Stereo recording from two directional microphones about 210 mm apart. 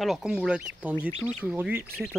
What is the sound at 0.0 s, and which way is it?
Speech, centre (ahead or behind).